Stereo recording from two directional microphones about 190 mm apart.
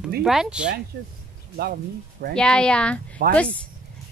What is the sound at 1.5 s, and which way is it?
Speech, 55° right (ahead or behind).